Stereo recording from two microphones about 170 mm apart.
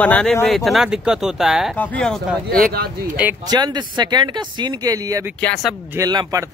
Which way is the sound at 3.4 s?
25° right (ahead or behind).